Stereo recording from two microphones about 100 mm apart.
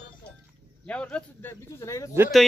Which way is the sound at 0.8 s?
10° left (ahead or behind).